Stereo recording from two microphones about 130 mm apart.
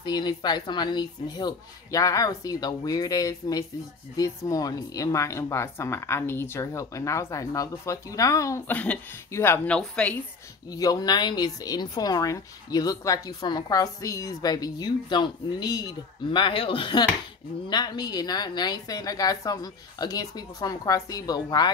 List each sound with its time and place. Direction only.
0.0 s speech: 35° left (ahead or behind); by 9.8 s 20° left (ahead or behind)
9.8 s speech: 5° left (ahead or behind)
10.7 s a woman's voice: 30° left (ahead or behind)